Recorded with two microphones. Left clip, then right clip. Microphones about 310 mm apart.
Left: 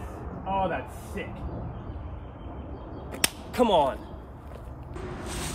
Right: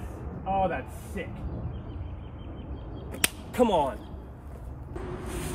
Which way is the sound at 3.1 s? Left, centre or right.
Centre.